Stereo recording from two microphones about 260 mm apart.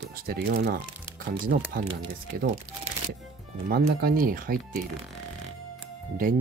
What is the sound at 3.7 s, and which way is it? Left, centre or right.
Speech, right.